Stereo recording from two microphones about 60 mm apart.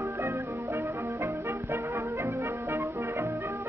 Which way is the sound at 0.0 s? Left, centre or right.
Right.